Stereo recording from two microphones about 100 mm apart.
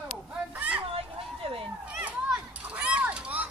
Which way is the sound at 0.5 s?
15° right (ahead or behind).